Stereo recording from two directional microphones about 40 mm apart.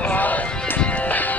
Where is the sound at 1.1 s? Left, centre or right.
Left.